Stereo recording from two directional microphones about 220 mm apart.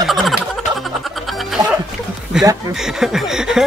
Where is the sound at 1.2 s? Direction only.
Centre (ahead or behind).